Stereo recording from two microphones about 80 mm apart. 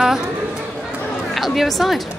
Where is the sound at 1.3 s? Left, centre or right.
Centre.